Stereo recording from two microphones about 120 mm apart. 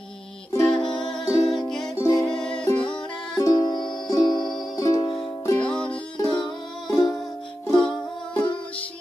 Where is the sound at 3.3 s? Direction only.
30° left (ahead or behind).